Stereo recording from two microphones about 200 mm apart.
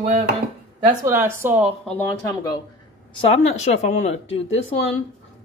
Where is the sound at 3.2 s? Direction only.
35° left (ahead or behind).